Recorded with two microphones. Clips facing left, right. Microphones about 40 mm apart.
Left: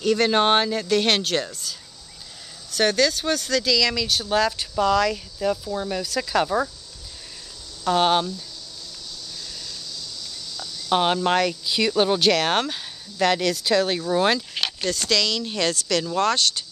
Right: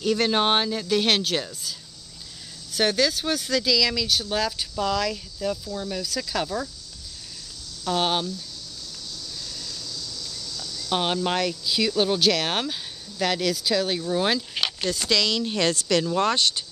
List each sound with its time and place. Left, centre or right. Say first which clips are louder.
0.0 s speech: left 3 dB; centre
7.8 s speech: left 5 dB; centre
9.5 s a sound: even; centre
10.6 s speech: left 5 dB; centre
14.8 s speech: left 1 dB; centre